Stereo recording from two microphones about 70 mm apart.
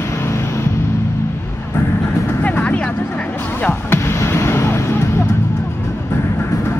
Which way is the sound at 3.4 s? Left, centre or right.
Left.